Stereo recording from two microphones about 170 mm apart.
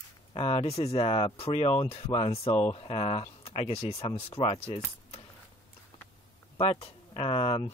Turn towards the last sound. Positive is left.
turn(degrees=30)  # may be behind; listen again after turning